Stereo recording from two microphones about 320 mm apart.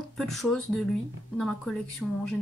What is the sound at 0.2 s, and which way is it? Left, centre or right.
A woman's voice, centre.